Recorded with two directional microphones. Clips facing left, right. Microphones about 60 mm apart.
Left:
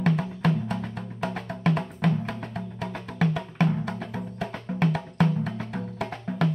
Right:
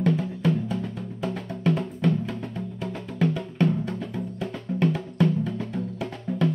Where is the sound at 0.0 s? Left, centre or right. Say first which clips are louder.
Right 1 dB; left.